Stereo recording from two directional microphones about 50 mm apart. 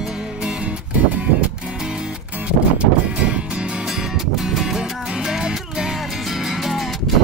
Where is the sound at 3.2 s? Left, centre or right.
Right.